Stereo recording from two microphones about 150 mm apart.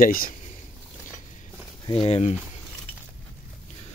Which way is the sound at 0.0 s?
70° left (ahead or behind).